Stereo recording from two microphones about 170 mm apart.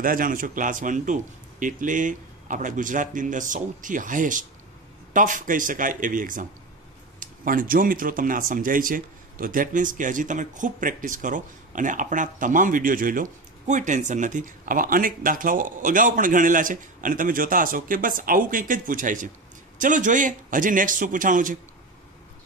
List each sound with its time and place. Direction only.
0.0 s speech: 55° right (ahead or behind)